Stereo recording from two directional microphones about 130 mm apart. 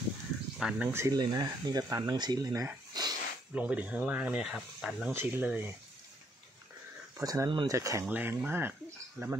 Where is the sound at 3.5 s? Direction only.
10° right (ahead or behind).